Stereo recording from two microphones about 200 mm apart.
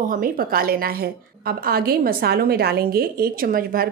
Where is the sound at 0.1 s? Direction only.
45° right (ahead or behind).